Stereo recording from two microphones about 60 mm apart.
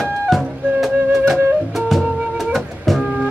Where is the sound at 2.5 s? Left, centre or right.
Centre.